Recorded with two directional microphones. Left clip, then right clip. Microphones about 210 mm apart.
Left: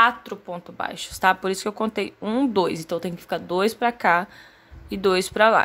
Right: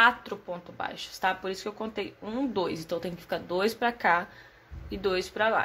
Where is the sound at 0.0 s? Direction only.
20° left (ahead or behind).